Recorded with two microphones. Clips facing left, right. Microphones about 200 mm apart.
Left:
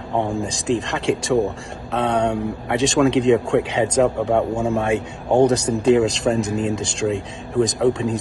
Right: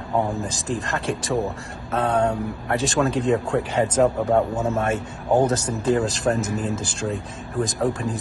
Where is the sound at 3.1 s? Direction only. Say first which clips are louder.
Left 6 dB; 90° left.